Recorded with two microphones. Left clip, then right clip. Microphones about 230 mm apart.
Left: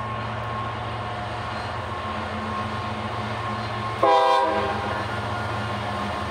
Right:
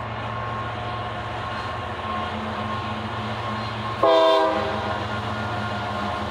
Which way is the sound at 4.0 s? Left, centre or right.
Left.